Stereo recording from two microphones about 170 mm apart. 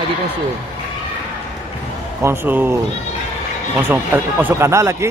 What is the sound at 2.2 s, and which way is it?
Speech, 15° right (ahead or behind).